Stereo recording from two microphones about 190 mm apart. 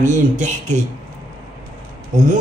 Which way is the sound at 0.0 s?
40° right (ahead or behind).